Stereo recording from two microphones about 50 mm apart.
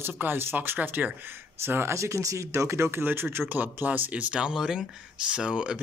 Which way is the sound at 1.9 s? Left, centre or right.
Right.